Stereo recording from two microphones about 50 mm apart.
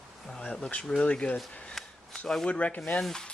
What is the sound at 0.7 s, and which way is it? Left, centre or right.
Speech, centre.